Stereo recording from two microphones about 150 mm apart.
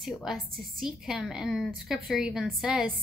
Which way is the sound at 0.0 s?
Centre (ahead or behind).